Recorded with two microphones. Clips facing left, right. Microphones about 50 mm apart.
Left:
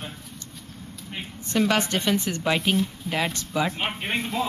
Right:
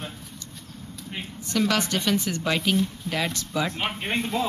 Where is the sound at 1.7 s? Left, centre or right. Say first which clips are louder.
Left 1 dB; left.